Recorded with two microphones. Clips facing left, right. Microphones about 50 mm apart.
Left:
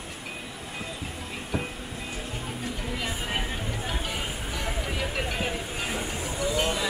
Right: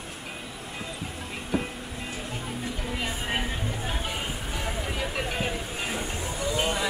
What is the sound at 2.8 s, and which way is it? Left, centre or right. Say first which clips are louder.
Music: right 1 dB; centre.